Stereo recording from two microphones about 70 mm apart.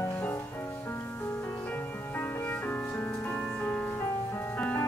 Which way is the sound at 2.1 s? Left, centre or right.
Left.